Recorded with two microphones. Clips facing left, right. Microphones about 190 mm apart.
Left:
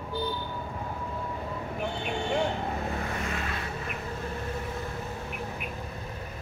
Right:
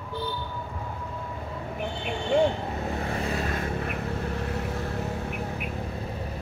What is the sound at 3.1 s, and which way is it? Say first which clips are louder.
Vehicle: right 4 dB; 35° right (ahead or behind).